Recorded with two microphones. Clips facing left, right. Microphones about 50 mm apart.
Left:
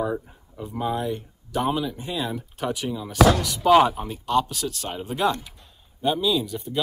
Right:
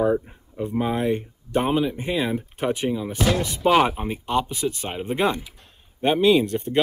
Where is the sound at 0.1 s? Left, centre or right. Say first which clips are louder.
Right 7 dB; right.